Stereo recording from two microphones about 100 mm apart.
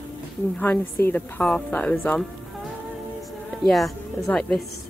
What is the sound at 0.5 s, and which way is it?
A woman's voice, 20° left (ahead or behind).